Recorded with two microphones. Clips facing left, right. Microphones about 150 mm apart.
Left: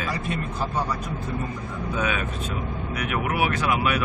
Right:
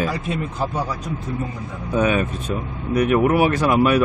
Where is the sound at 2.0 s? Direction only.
40° right (ahead or behind).